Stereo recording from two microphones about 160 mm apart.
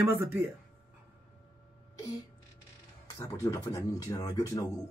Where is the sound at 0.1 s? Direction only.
15° right (ahead or behind).